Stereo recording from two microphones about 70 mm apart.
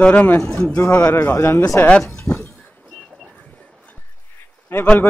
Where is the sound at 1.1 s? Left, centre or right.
Left.